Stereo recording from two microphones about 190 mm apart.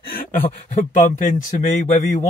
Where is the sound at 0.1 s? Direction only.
50° left (ahead or behind).